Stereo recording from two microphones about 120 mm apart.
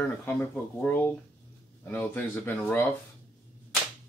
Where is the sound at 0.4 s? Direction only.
15° left (ahead or behind).